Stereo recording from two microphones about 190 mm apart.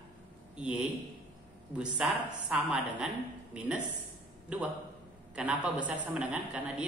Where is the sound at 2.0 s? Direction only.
5° right (ahead or behind).